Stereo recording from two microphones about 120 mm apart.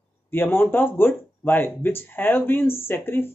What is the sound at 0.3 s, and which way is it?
Speech, 20° left (ahead or behind).